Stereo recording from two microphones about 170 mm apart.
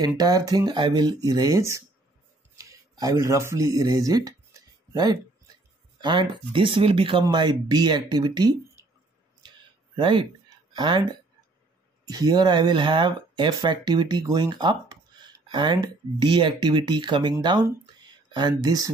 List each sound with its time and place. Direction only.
0.2 s speech: 20° right (ahead or behind)
2.5 s a sound: 20° right (ahead or behind)
5.9 s speech: 25° right (ahead or behind)
9.9 s speech: 30° right (ahead or behind)